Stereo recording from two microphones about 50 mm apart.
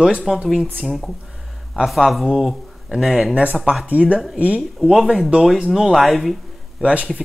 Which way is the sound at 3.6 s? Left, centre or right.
Centre.